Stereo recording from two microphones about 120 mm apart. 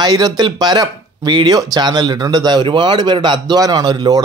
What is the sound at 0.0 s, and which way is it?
Speech, 35° right (ahead or behind).